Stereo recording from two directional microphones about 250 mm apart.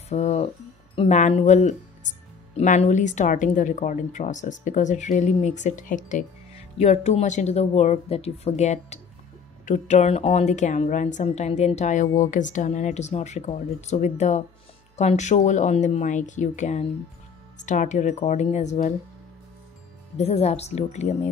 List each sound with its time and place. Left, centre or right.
0.1 s speech: left
20.2 s speech: left